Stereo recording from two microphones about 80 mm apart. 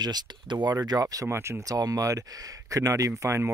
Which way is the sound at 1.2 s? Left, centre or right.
Right.